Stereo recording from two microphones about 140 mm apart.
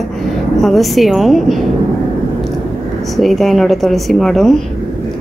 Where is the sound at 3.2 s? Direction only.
Centre (ahead or behind).